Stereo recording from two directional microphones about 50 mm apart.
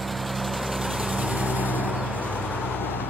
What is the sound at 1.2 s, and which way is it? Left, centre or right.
Vehicle, right.